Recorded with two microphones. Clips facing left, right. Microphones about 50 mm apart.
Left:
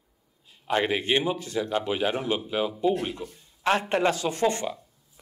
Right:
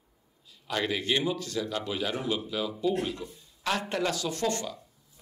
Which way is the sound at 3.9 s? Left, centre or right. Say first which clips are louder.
Left 6 dB; left.